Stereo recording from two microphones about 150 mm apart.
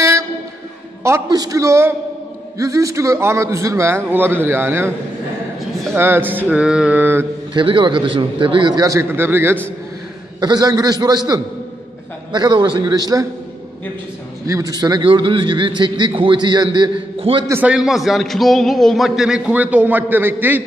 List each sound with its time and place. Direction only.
1.0 s a man's voice: 20° right (ahead or behind)
5.9 s a man's voice: 15° right (ahead or behind)
7.5 s a man's voice: 35° right (ahead or behind); by 9.6 s 15° right (ahead or behind)
10.4 s a man's voice: 25° right (ahead or behind)
14.5 s a man's voice: 25° right (ahead or behind)
17.5 s a man's voice: 10° right (ahead or behind)